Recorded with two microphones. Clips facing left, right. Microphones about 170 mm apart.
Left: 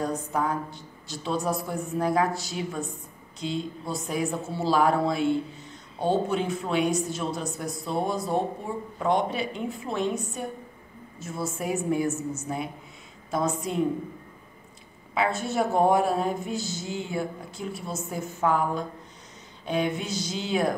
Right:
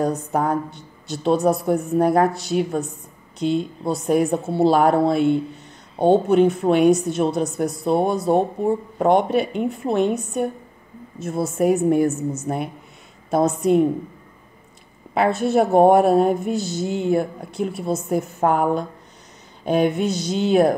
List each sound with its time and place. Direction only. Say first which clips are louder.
0.0 s a woman's voice: right 6 dB; 55° right (ahead or behind)
15.1 s a woman's voice: right 8 dB; 60° right (ahead or behind)